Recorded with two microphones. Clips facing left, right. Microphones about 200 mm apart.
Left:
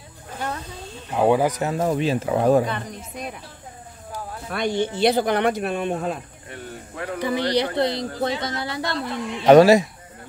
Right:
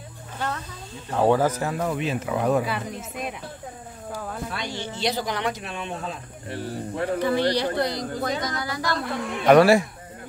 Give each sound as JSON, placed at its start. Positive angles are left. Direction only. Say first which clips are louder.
{"t": 1.1, "sound": "speech", "louder": "left 1 dB", "side_deg": 15}
{"t": 1.9, "sound": "speech", "louder": "left 5 dB", "side_deg": 35}
{"t": 2.6, "sound": "a woman's voice", "louder": "left 1 dB", "side_deg": -5}
{"t": 4.5, "sound": "speech", "louder": "left 8 dB", "side_deg": 55}
{"t": 7.2, "sound": "speech", "louder": "left 2 dB", "side_deg": 15}
{"t": 8.9, "sound": "a man's voice", "louder": "even", "side_deg": -55}
{"t": 9.5, "sound": "speech", "louder": "left 3 dB", "side_deg": 20}